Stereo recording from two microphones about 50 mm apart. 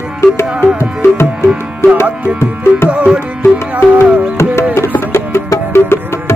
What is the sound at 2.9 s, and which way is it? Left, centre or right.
Music, right.